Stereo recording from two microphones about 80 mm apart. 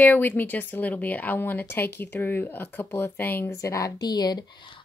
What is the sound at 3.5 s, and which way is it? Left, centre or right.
Speech, left.